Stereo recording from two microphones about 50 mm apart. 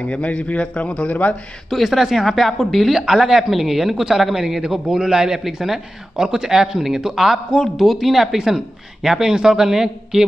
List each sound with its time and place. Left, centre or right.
0.0 s a man's voice: left
1.7 s a woman's voice: centre